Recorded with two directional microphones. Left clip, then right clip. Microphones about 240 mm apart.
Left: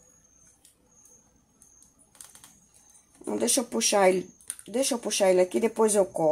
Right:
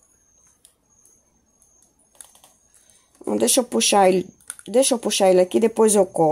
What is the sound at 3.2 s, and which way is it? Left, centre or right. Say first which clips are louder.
Speech: right 8 dB; right.